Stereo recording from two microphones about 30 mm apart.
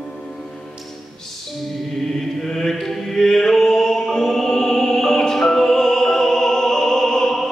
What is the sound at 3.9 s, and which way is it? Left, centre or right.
Music, centre.